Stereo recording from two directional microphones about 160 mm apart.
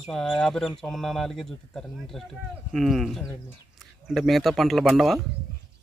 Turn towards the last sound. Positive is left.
turn(degrees=0)  # may be behind; listen again after turning